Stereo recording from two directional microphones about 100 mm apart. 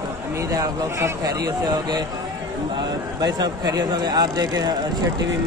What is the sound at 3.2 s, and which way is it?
Speech, 40° right (ahead or behind).